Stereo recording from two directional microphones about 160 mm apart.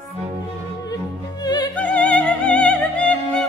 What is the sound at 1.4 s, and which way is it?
Music, 25° left (ahead or behind).